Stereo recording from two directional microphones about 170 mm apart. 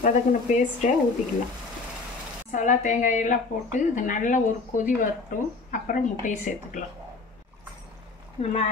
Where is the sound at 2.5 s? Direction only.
45° left (ahead or behind).